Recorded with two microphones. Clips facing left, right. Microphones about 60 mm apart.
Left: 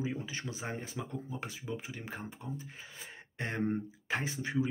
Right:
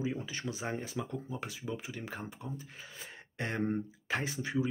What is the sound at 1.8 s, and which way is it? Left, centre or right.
Speech, left.